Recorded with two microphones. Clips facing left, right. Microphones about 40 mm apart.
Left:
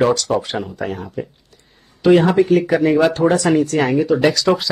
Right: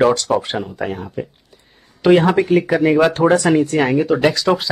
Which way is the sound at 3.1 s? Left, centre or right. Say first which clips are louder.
Right 2 dB; right.